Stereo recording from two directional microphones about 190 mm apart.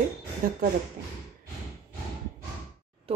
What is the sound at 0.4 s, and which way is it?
Speech, 50° right (ahead or behind).